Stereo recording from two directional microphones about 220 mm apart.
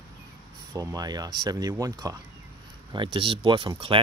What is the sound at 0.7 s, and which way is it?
Speech, 15° right (ahead or behind).